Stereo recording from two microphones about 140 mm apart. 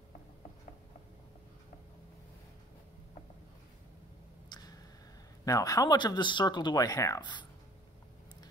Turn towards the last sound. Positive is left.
turn(degrees=35)  # may be behind; listen again after turning